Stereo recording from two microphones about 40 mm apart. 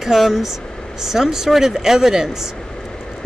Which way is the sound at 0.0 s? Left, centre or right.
Centre.